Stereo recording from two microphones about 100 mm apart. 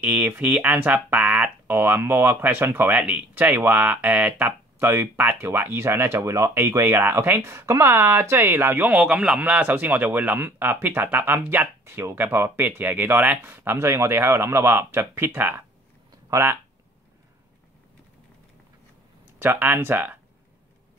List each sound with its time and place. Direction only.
0.0 s speech: 15° right (ahead or behind)
16.1 s a sound: 30° right (ahead or behind)
19.3 s speech: 20° right (ahead or behind)